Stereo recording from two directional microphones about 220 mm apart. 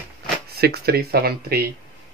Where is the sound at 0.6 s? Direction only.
45° right (ahead or behind).